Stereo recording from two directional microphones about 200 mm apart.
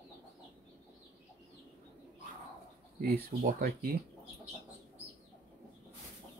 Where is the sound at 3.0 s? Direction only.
50° right (ahead or behind).